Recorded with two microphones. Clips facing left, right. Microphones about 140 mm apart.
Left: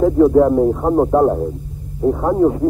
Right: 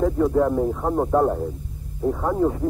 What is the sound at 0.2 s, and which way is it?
A man's voice, 35° left (ahead or behind).